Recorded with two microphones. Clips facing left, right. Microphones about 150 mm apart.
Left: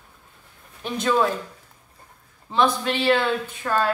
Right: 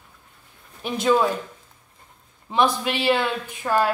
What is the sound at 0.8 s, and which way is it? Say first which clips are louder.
Speech: right 2 dB; 10° right (ahead or behind).